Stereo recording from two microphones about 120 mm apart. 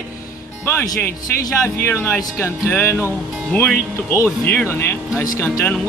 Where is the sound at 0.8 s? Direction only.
30° left (ahead or behind).